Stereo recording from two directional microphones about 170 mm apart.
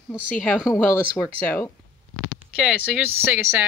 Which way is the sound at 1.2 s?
10° left (ahead or behind).